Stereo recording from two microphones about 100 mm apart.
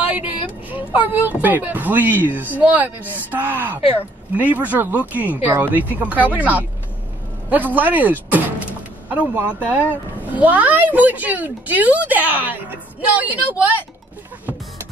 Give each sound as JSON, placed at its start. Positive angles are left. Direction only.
{"t": 0.7, "sound": "a child's voice", "side_deg": -15}